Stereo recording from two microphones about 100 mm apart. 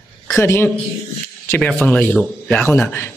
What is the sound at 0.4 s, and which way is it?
Speech, 25° left (ahead or behind).